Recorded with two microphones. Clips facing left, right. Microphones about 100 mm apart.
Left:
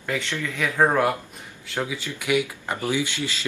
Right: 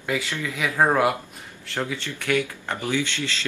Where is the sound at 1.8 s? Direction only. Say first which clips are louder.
Even; 10° left (ahead or behind).